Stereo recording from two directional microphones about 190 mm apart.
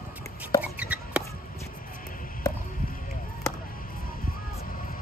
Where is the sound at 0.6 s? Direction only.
5° right (ahead or behind).